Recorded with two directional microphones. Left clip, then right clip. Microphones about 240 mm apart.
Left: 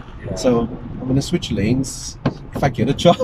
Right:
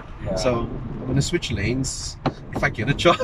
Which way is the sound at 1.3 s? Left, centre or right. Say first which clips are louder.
Left 4 dB; centre.